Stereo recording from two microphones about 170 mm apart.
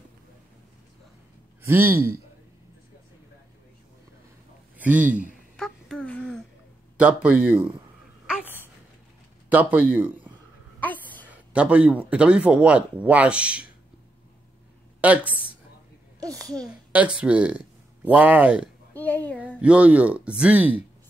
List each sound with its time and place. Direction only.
1.6 s a man's voice: 15° right (ahead or behind)
4.7 s a man's voice: 10° right (ahead or behind)
5.6 s a sound: 5° left (ahead or behind)
7.0 s a man's voice: 5° right (ahead or behind)
9.5 s speech: 10° right (ahead or behind)
10.8 s a sound: 10° left (ahead or behind)
11.2 s a man's voice: 10° right (ahead or behind)
15.0 s a woman's voice: 10° right (ahead or behind)
16.6 s a man's voice: 5° right (ahead or behind)
18.9 s speech: 10° left (ahead or behind)
19.6 s a man's voice: 5° right (ahead or behind)